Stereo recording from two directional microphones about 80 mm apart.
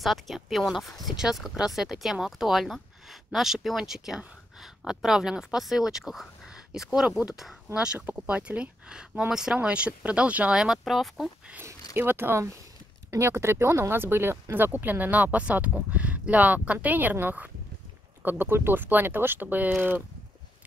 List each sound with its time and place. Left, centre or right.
0.0 s speech: centre
10.8 s speech: centre
11.6 s speech: right